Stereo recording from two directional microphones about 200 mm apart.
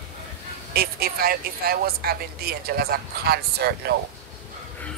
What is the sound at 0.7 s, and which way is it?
Speech, 50° right (ahead or behind).